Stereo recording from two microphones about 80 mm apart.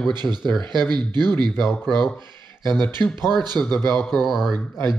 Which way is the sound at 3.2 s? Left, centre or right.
Right.